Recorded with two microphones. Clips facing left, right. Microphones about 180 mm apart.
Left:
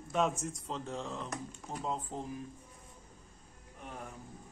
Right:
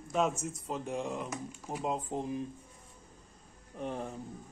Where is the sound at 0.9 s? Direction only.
15° right (ahead or behind).